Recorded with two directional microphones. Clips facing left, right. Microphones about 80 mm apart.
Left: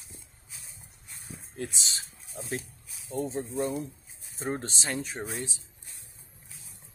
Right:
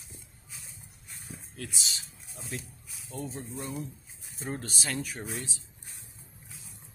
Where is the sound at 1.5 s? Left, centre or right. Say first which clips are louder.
Left 4 dB; left.